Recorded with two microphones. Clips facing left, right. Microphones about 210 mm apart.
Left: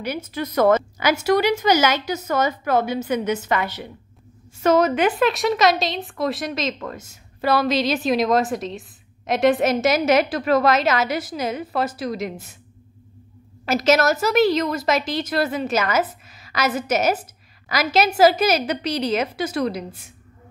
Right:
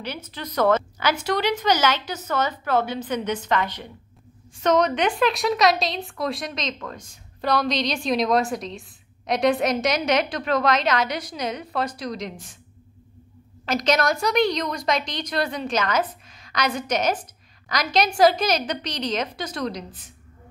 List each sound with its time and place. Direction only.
0.0 s a woman's voice: 10° left (ahead or behind)
13.7 s a woman's voice: 5° left (ahead or behind)